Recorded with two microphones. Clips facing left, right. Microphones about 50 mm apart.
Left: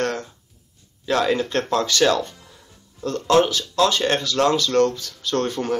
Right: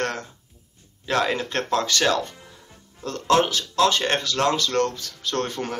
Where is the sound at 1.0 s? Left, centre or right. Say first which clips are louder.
Left 3 dB; right.